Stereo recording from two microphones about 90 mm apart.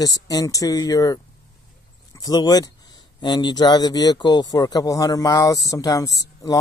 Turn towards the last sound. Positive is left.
turn(degrees=45)  # may be behind; listen again after turning